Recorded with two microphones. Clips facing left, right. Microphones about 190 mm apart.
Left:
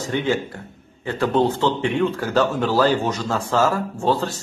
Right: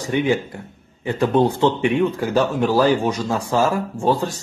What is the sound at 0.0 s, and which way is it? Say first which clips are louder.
Speech: right 2 dB; 15° right (ahead or behind).